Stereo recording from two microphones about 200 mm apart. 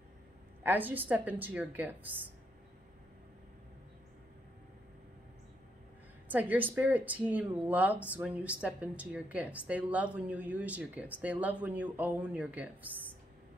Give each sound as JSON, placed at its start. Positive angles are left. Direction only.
{"t": 0.7, "sound": "speech", "side_deg": -10}
{"t": 6.2, "sound": "speech", "side_deg": -10}